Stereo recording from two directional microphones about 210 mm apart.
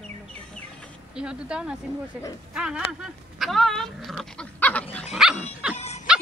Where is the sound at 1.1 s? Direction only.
5° right (ahead or behind).